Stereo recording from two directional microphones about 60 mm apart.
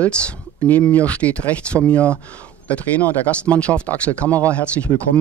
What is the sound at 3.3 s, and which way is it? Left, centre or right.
Speech, centre.